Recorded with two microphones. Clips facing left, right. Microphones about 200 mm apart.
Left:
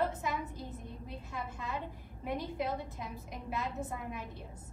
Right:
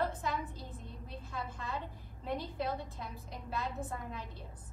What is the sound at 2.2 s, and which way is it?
A woman's voice, 15° left (ahead or behind).